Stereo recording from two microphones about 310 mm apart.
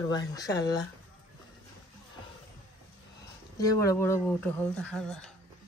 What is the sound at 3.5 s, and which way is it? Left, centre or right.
Speech, centre.